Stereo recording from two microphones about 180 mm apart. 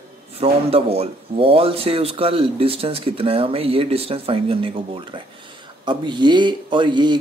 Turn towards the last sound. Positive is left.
turn(degrees=-25)  # may be behind; listen again after turning